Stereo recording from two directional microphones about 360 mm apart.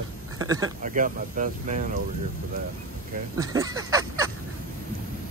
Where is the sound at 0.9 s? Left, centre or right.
Right.